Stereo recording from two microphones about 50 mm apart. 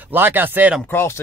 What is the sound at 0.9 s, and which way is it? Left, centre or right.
Speech, left.